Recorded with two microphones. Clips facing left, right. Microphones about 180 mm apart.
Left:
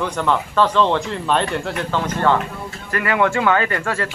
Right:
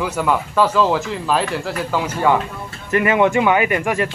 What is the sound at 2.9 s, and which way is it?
Speech, 20° right (ahead or behind).